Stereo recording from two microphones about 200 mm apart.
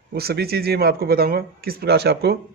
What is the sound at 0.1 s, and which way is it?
A man's voice, 50° right (ahead or behind).